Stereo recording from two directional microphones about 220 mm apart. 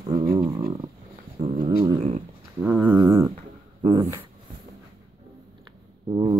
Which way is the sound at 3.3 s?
25° right (ahead or behind).